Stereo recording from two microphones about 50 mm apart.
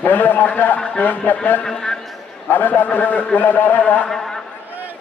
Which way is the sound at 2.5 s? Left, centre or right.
Left.